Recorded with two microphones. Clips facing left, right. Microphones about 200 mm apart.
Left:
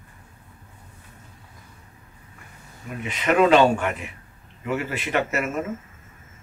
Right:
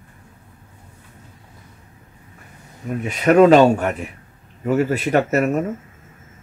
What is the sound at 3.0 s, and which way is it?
Speech, 40° right (ahead or behind).